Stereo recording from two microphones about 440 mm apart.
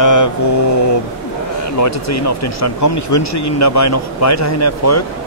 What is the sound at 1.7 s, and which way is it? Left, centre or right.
Speech, left.